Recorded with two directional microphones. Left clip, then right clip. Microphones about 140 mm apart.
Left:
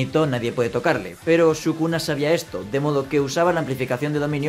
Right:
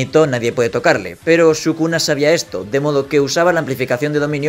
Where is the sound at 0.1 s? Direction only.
25° right (ahead or behind).